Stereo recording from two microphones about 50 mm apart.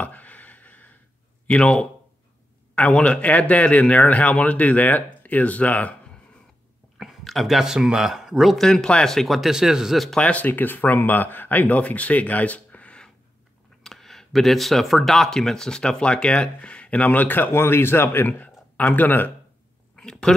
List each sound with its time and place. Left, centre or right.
0.0 s a sound: left
1.5 s speech: left
7.0 s speech: centre
8.5 s speech: centre
9.4 s speech: centre
10.3 s speech: left
13.8 s speech: centre; by 18.5 s left
18.8 s speech: left
20.0 s a sound: centre